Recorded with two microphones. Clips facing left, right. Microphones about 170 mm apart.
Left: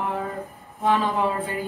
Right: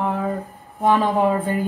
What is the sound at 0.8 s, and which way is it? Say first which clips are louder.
Speech: right 4 dB; 45° right (ahead or behind).